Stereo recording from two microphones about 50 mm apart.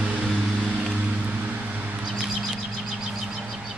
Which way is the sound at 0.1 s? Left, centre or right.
Right.